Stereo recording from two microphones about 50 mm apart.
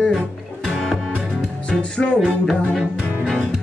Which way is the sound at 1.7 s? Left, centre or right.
Left.